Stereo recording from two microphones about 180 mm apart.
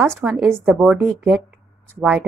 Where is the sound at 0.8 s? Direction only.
15° right (ahead or behind).